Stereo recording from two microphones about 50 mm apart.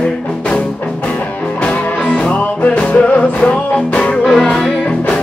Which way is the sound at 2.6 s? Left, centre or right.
Left.